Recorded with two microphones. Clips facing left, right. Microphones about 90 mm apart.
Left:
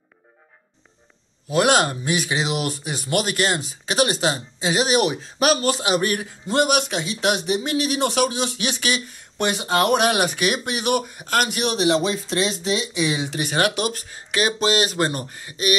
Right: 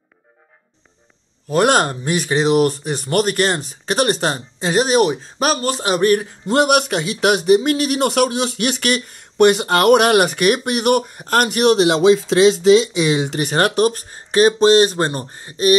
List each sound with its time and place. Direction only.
1.5 s speech: 40° right (ahead or behind)
6.4 s speech: 55° right (ahead or behind); by 15.7 s 35° right (ahead or behind)